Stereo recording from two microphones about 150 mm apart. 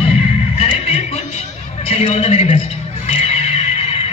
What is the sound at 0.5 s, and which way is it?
Music, 40° left (ahead or behind).